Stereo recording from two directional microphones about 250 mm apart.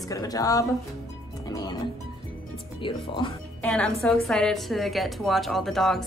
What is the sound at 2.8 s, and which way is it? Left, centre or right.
Speech, centre.